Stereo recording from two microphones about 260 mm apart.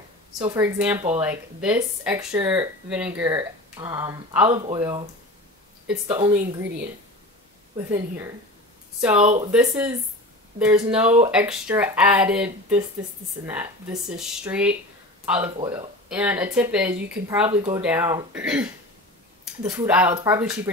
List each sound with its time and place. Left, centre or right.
0.4 s speech: centre
6.1 s speech: centre
9.0 s speech: centre
17.5 s speech: right
17.8 s speech: centre